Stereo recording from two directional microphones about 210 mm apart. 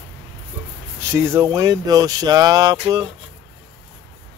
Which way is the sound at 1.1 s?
10° right (ahead or behind).